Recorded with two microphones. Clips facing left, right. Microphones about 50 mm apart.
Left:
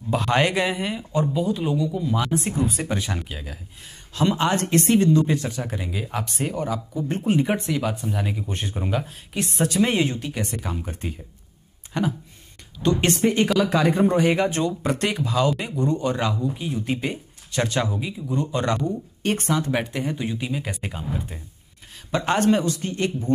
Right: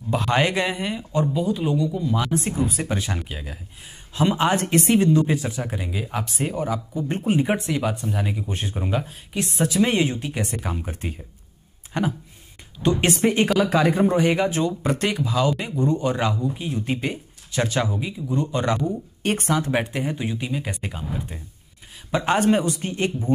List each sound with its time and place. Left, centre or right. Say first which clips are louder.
0.1 s speech: even; centre
22.1 s speech: right 1 dB; centre